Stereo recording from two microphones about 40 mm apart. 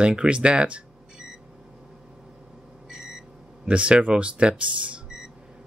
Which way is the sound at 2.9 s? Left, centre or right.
Centre.